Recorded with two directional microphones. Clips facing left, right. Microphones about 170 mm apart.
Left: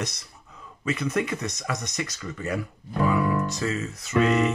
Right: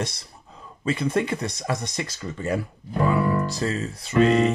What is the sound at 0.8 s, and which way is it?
Music, 30° right (ahead or behind).